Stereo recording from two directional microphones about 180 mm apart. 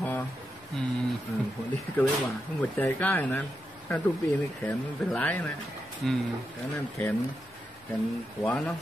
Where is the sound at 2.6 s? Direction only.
10° left (ahead or behind).